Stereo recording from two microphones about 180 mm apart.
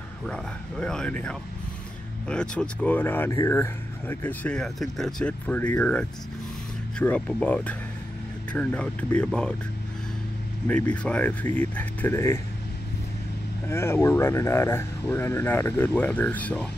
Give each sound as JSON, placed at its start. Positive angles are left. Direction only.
{"t": 0.3, "sound": "speech", "side_deg": 5}
{"t": 10.7, "sound": "speech", "side_deg": 5}
{"t": 13.7, "sound": "speech", "side_deg": 15}